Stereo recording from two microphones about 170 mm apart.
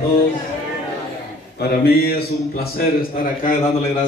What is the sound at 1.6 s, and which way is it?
A man's voice, 65° left (ahead or behind).